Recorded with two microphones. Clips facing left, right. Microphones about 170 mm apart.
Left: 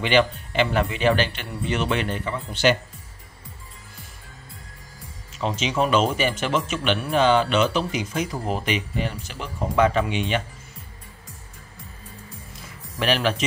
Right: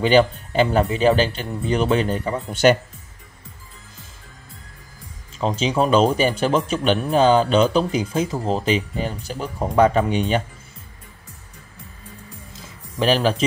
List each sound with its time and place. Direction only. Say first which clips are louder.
0.0 s speech: right 4 dB; 35° right (ahead or behind)
5.4 s speech: right 3 dB; 35° right (ahead or behind)
13.0 s speech: right 4 dB; 35° right (ahead or behind)